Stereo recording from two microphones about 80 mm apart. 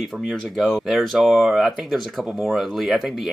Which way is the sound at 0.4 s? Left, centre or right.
Centre.